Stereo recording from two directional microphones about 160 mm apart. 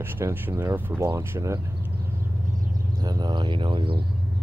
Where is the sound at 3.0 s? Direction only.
25° right (ahead or behind).